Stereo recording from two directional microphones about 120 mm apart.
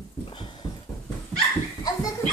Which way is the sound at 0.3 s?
45° left (ahead or behind).